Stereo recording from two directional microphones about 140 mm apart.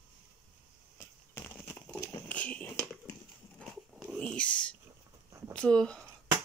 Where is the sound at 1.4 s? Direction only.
15° left (ahead or behind).